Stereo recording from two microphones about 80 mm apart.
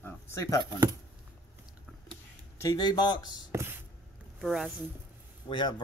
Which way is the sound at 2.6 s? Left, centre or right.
Left.